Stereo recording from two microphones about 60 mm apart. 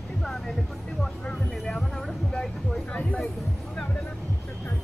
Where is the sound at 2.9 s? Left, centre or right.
Left.